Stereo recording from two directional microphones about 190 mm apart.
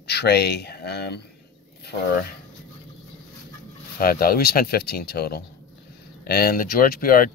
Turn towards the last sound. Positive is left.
turn(degrees=50)  # may be behind; listen again after turning